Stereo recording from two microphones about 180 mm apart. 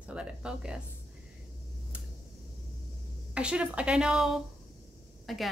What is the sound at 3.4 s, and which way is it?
A woman's voice, 5° right (ahead or behind).